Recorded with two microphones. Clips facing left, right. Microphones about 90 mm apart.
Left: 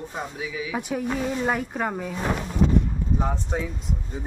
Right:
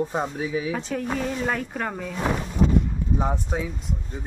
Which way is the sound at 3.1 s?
15° right (ahead or behind).